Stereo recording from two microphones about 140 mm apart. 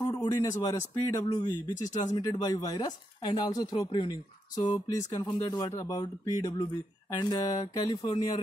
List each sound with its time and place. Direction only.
0.0 s a man's voice: 30° left (ahead or behind)